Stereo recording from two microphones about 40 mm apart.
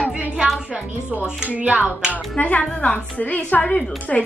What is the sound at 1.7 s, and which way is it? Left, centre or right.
Speech, right.